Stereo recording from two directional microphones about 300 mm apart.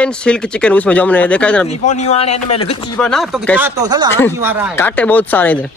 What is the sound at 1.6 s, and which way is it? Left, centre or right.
A man's voice, left.